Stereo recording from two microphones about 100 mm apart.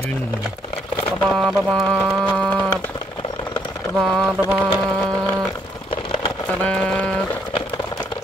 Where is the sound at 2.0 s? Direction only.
5° left (ahead or behind).